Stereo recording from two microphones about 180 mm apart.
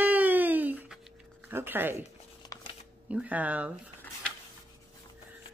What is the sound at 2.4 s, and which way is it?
Shuffling cards, 20° left (ahead or behind).